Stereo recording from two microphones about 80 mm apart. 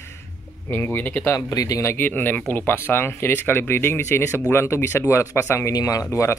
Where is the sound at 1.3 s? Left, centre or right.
Left.